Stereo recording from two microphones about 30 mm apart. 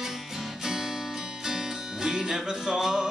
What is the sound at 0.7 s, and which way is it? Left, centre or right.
Music, centre.